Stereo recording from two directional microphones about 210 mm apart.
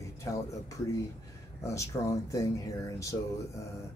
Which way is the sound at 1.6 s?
15° left (ahead or behind).